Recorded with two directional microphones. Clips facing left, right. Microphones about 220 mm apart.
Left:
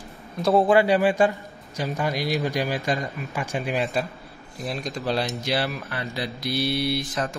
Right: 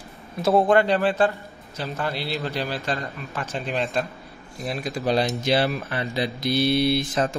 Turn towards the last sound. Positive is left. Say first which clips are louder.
# right 4 dB
turn(degrees=-25)  # may be behind; listen again after turning